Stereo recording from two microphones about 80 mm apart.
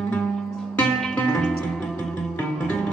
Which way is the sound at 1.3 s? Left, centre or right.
Centre.